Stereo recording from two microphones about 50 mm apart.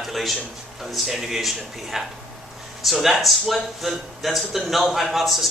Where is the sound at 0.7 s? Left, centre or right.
Centre.